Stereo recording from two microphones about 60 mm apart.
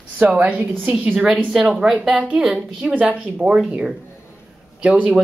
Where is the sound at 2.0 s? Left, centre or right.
Right.